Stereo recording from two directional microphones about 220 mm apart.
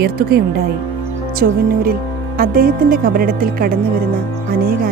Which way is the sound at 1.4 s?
45° right (ahead or behind).